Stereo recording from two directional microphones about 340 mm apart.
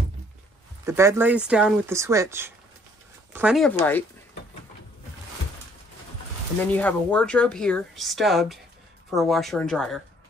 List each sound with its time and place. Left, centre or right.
0.8 s speech: centre
6.6 s speech: centre